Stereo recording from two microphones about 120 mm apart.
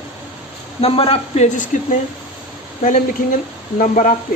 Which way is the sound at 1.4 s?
90° left.